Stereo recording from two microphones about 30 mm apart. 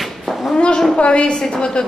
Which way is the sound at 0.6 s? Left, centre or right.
Left.